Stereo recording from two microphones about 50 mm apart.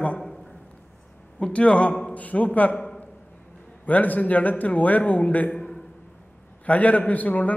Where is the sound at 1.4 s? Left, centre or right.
Left.